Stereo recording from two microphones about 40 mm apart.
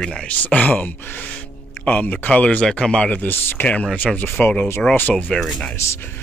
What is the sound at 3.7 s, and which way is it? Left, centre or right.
Speech, left.